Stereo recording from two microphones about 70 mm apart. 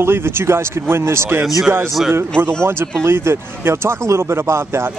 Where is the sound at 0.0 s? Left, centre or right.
Right.